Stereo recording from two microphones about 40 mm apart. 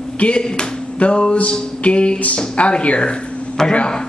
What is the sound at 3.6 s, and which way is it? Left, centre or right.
Speech, centre.